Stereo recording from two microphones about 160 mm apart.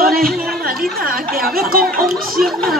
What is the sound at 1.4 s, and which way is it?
Speech, 65° right (ahead or behind).